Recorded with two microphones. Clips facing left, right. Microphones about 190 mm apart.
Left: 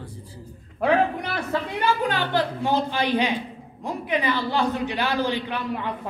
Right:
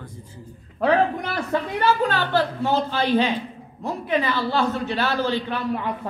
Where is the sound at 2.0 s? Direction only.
15° left (ahead or behind).